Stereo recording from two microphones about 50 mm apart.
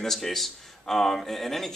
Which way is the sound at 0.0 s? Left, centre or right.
Centre.